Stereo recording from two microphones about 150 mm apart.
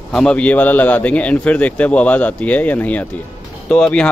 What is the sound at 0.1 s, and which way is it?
Speech, 5° left (ahead or behind).